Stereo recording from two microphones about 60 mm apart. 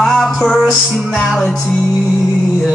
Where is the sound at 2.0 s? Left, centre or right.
Centre.